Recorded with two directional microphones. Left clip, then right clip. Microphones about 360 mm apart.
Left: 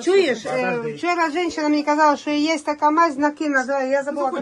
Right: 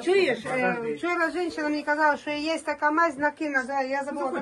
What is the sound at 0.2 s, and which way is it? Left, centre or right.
Speech, centre.